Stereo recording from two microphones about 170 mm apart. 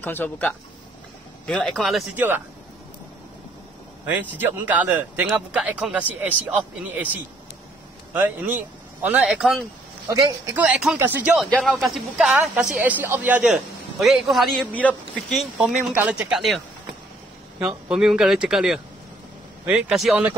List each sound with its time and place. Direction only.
0.0 s a man's voice: 10° left (ahead or behind)
4.0 s a man's voice: 10° right (ahead or behind)
8.1 s a man's voice: 10° right (ahead or behind)
10.0 s a man's voice: 15° right (ahead or behind)